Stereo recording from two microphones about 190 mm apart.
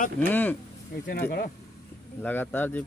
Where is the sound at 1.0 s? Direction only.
50° left (ahead or behind).